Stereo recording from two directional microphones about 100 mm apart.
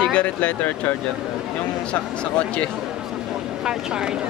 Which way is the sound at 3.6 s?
10° right (ahead or behind).